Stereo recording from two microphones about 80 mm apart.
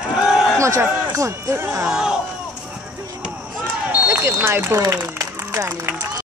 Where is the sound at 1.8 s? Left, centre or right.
Centre.